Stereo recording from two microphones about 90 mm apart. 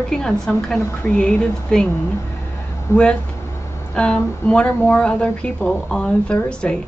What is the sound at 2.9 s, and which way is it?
Speech, 30° left (ahead or behind).